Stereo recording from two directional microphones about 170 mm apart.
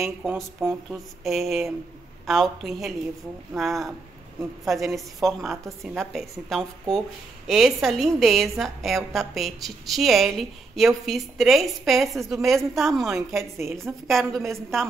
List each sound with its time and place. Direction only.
0.2 s a woman's voice: 5° right (ahead or behind)
4.9 s a woman's voice: centre (ahead or behind)
13.4 s a woman's voice: 15° right (ahead or behind)
14.0 s a woman's voice: centre (ahead or behind)